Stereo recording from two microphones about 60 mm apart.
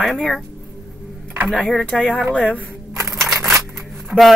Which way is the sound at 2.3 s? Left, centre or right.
Left.